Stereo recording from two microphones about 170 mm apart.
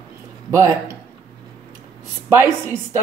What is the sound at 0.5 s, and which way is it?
Music, 15° right (ahead or behind).